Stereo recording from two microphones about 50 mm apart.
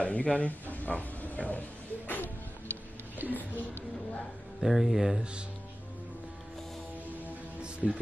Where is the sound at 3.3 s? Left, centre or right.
Left.